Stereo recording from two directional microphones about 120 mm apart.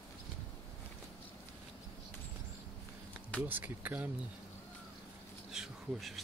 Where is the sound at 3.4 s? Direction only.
15° right (ahead or behind).